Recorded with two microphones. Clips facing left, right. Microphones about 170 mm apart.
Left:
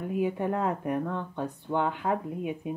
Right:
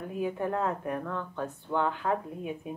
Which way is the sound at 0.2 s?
20° left (ahead or behind).